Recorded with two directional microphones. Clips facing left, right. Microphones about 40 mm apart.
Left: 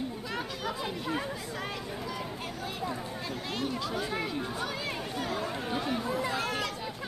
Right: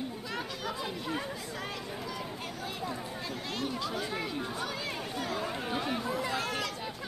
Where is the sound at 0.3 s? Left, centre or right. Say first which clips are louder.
Left 1 dB; centre.